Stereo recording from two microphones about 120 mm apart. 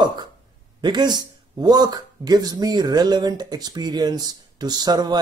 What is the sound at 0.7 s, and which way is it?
Speech, 40° right (ahead or behind).